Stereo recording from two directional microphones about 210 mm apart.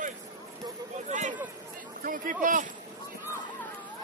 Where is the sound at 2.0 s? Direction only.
40° right (ahead or behind).